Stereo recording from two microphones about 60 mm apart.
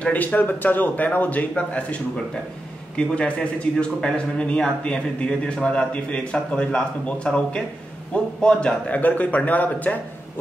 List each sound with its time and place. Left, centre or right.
0.0 s a man's voice: left
3.0 s a man's voice: centre